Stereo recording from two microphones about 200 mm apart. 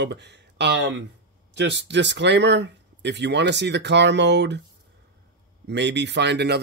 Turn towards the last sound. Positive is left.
turn(degrees=-60)  # may be behind; listen again after turning